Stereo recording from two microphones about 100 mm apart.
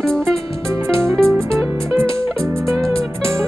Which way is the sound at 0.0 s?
5° left (ahead or behind).